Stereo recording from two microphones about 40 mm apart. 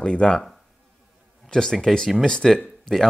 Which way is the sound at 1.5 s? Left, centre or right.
Centre.